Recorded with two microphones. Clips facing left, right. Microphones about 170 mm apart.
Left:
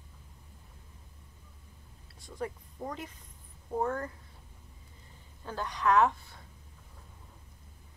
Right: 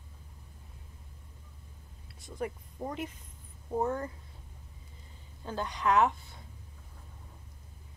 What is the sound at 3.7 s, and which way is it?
Speech, 15° right (ahead or behind).